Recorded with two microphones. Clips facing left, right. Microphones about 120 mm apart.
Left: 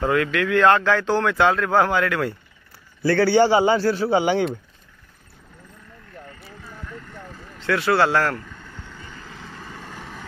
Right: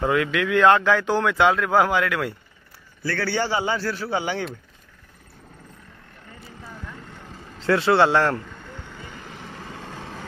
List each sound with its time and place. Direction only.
0.0 s a man's voice: 15° right (ahead or behind)
3.0 s a man's voice: 25° left (ahead or behind)
7.3 s vehicle: 30° right (ahead or behind)